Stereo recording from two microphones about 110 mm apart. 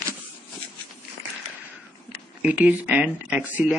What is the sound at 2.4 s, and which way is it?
Speech, 10° right (ahead or behind).